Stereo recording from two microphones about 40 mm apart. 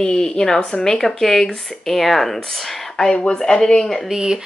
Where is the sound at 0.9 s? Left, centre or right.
Centre.